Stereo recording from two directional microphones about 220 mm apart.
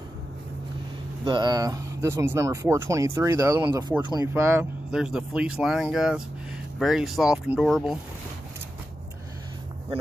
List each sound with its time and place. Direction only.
1.2 s speech: 20° right (ahead or behind); by 8.0 s centre (ahead or behind)